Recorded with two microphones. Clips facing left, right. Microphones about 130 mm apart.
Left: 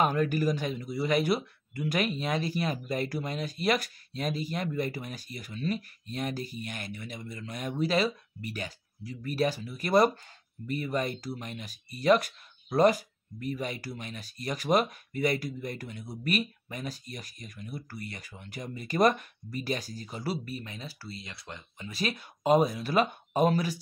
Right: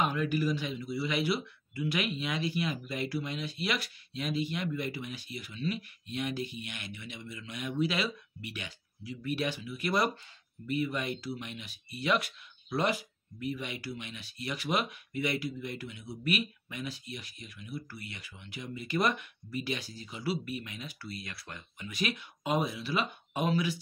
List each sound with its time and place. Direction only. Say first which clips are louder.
0.0 s speech: left 4 dB; 45° left (ahead or behind)